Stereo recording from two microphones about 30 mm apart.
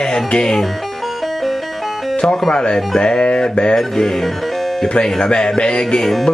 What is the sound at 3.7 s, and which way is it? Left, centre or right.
Speech, centre.